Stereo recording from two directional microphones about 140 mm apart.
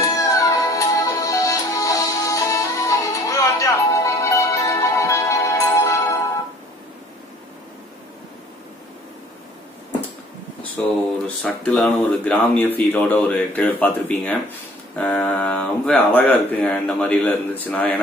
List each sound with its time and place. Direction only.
0.0 s music: 25° left (ahead or behind)
10.8 s speech: 10° left (ahead or behind)